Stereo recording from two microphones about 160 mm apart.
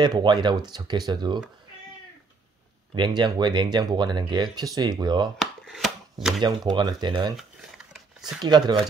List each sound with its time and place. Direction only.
0.0 s speech: 30° right (ahead or behind)
2.9 s speech: 30° right (ahead or behind)
5.4 s chopping: centre (ahead or behind)
6.4 s speech: 25° right (ahead or behind)
7.3 s a sound: centre (ahead or behind)
8.4 s speech: 25° right (ahead or behind)